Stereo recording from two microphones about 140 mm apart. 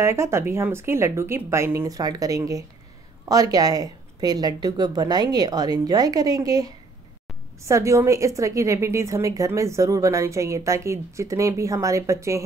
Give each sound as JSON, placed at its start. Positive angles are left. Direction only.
{"t": 0.0, "sound": "a woman's voice", "side_deg": -20}